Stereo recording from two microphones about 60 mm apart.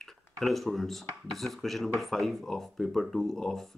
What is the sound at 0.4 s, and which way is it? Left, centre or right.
Speech, centre.